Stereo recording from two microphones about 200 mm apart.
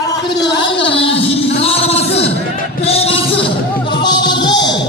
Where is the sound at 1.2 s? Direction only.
30° left (ahead or behind).